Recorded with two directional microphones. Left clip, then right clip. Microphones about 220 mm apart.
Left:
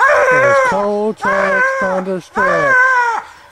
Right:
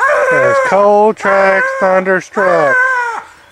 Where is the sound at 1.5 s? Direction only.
5° right (ahead or behind).